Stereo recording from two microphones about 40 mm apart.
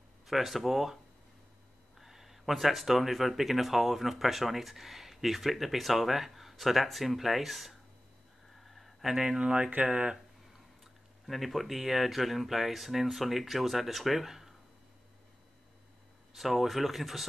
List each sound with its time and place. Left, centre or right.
0.3 s speech: centre
2.0 s speech: centre
8.6 s a sound: centre
9.1 s speech: centre
9.4 s speech: right
10.8 s speech: centre
16.3 s speech: centre